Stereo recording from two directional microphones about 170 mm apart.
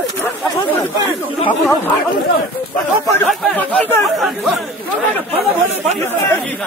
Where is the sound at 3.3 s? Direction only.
10° left (ahead or behind).